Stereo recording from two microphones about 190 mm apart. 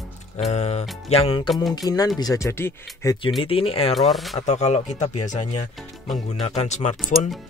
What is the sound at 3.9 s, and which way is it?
Speech, centre (ahead or behind).